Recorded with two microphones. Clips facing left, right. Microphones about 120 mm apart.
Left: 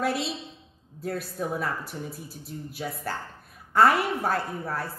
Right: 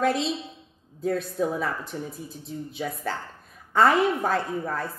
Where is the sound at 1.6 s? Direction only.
5° left (ahead or behind).